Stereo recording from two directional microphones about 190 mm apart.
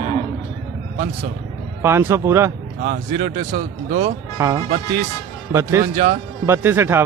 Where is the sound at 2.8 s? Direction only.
55° right (ahead or behind).